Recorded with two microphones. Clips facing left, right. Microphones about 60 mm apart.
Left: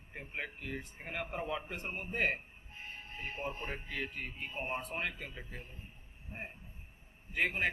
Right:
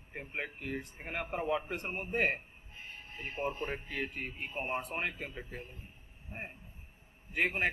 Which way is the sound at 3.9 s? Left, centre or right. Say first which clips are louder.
Right 2 dB; centre.